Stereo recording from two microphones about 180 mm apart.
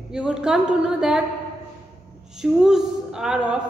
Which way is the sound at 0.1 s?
5° right (ahead or behind).